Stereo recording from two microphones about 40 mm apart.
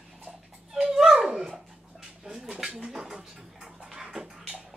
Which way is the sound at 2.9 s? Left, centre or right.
Centre.